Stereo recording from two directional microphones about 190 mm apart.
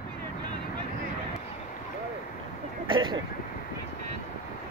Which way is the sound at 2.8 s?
25° right (ahead or behind).